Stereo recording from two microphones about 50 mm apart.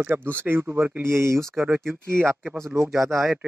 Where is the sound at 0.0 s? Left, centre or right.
Right.